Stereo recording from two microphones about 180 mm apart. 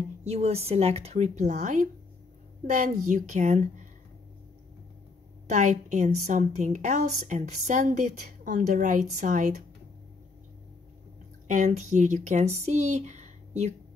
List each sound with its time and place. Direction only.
0.2 s a woman's voice: 35° right (ahead or behind)
5.5 s a woman's voice: 40° right (ahead or behind)
11.4 s a woman's voice: 45° right (ahead or behind)